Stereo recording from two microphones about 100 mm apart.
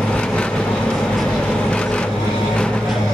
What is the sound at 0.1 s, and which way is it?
Vehicle, 10° left (ahead or behind).